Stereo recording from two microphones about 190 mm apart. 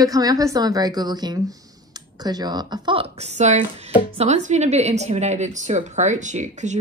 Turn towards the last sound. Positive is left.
turn(degrees=-40)  # may be behind; listen again after turning